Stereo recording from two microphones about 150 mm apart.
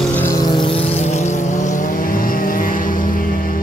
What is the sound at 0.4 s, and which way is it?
Vehicle, 30° left (ahead or behind).